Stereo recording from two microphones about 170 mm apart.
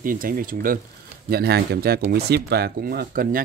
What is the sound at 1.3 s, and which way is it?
Speech, 65° right (ahead or behind).